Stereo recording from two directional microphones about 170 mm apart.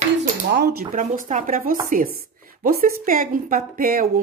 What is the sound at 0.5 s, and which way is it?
Speech, 70° right (ahead or behind).